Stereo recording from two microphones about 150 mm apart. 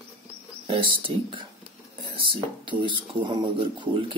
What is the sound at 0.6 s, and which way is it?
Speech, 35° right (ahead or behind).